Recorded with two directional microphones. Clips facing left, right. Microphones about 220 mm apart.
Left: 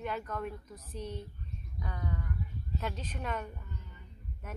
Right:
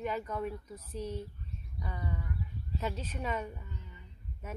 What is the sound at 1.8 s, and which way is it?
Sheep, 5° right (ahead or behind).